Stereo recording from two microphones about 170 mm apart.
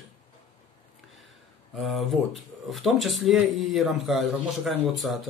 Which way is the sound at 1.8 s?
Centre (ahead or behind).